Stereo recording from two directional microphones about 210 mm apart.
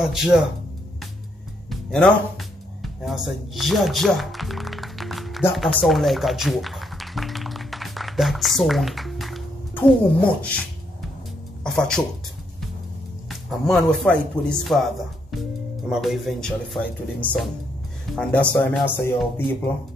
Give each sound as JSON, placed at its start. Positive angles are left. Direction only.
{"t": 0.0, "sound": "speech", "side_deg": 0}
{"t": 1.7, "sound": "music", "side_deg": 5}
{"t": 5.5, "sound": "a sound", "side_deg": 0}
{"t": 11.6, "sound": "speech", "side_deg": 5}
{"t": 13.3, "sound": "speech", "side_deg": 0}
{"t": 15.9, "sound": "speech", "side_deg": 0}